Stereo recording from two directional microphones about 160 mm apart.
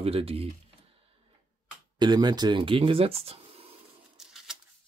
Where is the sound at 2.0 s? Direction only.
25° right (ahead or behind).